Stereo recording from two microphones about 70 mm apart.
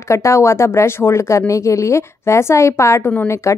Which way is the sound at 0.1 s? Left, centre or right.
Left.